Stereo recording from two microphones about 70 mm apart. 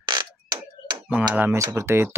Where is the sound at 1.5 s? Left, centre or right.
Right.